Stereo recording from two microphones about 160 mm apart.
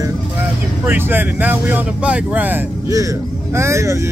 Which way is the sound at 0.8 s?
15° right (ahead or behind).